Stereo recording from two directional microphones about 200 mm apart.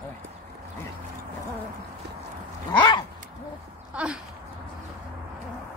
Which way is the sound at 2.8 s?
25° left (ahead or behind).